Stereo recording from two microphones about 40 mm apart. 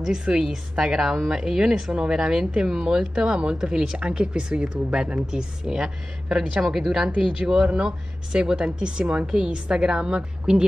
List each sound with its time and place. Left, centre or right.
0.0 s a woman's voice: centre
3.2 s a woman's voice: right